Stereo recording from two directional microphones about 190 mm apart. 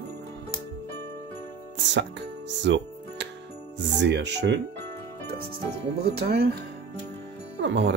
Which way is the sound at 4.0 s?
65° right (ahead or behind).